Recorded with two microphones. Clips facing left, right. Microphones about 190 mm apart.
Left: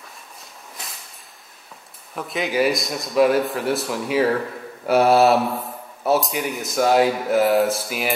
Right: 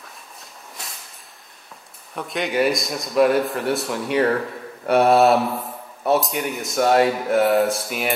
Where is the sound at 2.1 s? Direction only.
Centre (ahead or behind).